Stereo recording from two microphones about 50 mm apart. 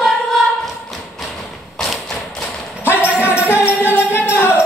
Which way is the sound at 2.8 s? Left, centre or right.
Right.